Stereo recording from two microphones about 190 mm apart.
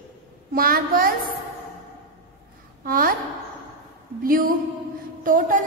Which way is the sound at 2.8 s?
50° right (ahead or behind).